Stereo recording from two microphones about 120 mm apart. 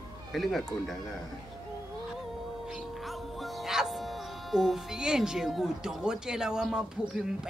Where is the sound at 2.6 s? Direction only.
Centre (ahead or behind).